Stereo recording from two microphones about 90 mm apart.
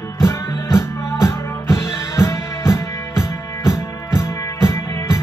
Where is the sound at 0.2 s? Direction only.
30° left (ahead or behind).